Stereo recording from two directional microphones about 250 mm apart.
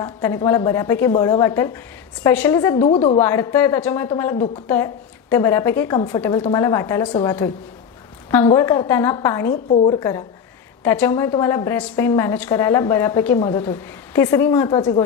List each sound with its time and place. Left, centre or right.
0.0 s a woman's voice: centre
3.2 s a woman's voice: centre
9.5 s a woman's voice: left